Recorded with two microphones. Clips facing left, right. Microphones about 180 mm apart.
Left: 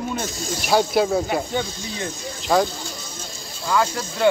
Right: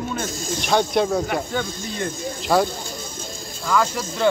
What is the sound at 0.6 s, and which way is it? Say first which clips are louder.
Speech: left 1 dB; 5° left (ahead or behind).